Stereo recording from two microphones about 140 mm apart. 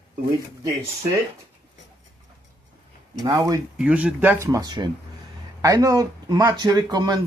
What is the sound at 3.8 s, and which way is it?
Speech, 10° right (ahead or behind).